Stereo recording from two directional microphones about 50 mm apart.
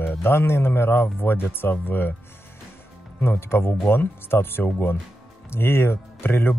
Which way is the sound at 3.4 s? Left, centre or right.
Left.